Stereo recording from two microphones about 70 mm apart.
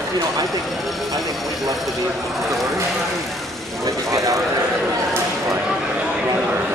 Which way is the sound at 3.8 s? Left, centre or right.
Right.